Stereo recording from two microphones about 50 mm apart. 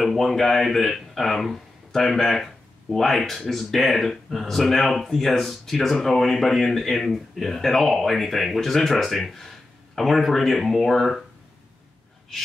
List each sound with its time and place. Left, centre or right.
0.0 s speech: centre